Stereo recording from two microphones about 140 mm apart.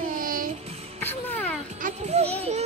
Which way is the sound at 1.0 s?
15° left (ahead or behind).